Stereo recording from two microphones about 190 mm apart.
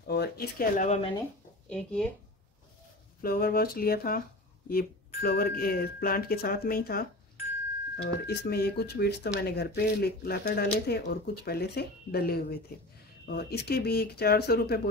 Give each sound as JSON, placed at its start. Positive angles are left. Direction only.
{"t": 0.0, "sound": "a sound", "side_deg": 55}
{"t": 0.8, "sound": "speech", "side_deg": 35}
{"t": 1.7, "sound": "speech", "side_deg": 5}
{"t": 3.2, "sound": "speech", "side_deg": 50}
{"t": 8.3, "sound": "speech", "side_deg": 55}